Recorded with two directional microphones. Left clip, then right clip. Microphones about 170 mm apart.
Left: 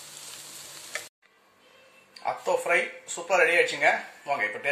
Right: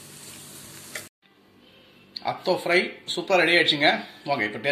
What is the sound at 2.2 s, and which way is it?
Speech, 5° left (ahead or behind).